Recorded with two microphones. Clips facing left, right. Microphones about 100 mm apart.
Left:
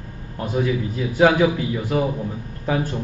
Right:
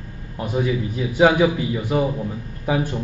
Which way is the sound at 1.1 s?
15° right (ahead or behind).